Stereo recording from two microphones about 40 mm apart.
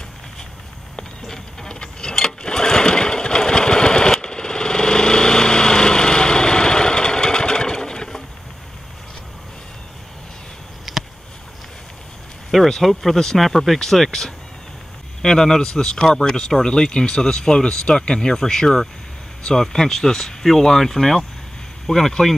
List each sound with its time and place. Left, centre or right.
0.9 s sewing machine: centre
10.9 s a sound: centre
12.6 s speech: centre